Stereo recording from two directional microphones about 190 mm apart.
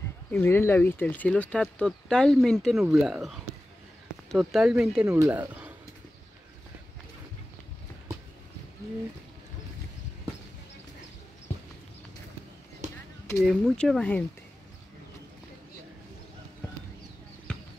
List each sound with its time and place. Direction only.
0.3 s speech: 10° left (ahead or behind)
5.0 s speech: 15° right (ahead or behind)
12.8 s a sound: 40° right (ahead or behind)
13.4 s speech: centre (ahead or behind)
17.5 s basketball bounce: 5° left (ahead or behind)